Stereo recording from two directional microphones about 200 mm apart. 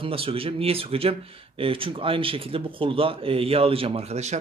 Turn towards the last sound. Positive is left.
turn(degrees=-35)  # may be behind; listen again after turning